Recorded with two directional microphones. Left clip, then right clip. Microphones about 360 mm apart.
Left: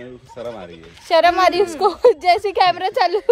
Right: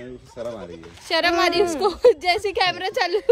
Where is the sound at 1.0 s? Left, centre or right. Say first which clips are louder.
Left 6 dB; centre.